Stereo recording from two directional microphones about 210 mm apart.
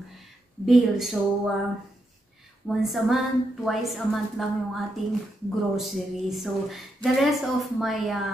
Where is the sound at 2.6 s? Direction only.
Centre (ahead or behind).